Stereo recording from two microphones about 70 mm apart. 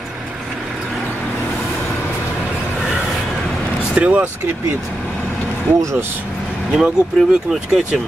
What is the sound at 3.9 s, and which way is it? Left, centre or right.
Speech, centre.